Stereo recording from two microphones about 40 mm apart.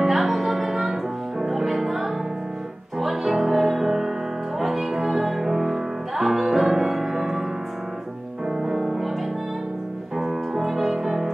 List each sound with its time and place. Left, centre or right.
0.0 s music: centre
8.5 s music: centre
10.1 s music: centre